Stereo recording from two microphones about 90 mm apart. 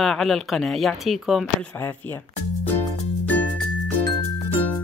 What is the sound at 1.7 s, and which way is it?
Speech, 25° left (ahead or behind).